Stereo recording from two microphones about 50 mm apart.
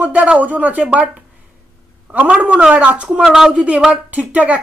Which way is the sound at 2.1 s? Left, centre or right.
Right.